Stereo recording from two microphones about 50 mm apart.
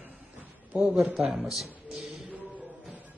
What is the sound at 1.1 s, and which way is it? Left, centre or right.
Speech, centre.